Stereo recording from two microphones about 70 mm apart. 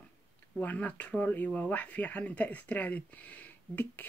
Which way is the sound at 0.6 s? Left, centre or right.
Left.